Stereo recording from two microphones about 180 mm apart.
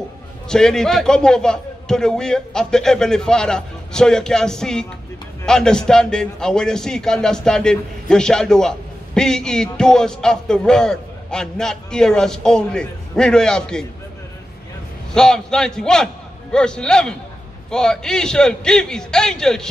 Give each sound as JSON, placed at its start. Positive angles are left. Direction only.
{"t": 0.5, "sound": "a man's voice", "side_deg": 5}
{"t": 15.1, "sound": "a man's voice", "side_deg": 5}